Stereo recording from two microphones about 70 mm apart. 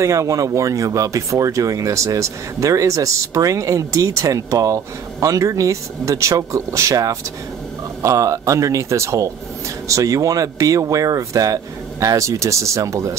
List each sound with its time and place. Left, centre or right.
0.0 s speech: right